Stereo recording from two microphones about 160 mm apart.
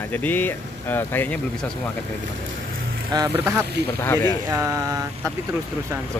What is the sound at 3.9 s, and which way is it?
Speech, 15° left (ahead or behind).